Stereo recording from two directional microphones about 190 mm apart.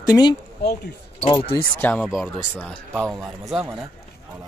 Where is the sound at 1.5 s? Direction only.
10° left (ahead or behind).